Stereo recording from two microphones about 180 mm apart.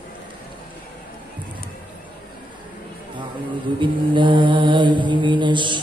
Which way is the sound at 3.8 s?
25° right (ahead or behind).